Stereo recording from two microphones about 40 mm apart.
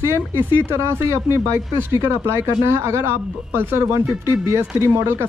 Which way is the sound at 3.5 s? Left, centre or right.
Right.